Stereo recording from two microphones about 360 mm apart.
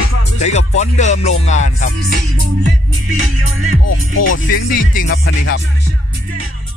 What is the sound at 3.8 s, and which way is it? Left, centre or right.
Music, left.